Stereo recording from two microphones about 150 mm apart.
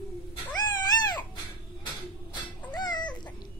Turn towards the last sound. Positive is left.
turn(degrees=30)  # may be behind; listen again after turning